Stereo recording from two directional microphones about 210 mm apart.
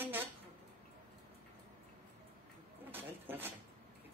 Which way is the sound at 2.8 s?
10° right (ahead or behind).